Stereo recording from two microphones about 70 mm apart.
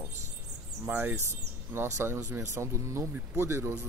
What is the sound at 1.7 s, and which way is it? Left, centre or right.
Speech, right.